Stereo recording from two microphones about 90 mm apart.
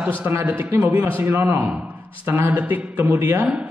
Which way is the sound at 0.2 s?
25° right (ahead or behind).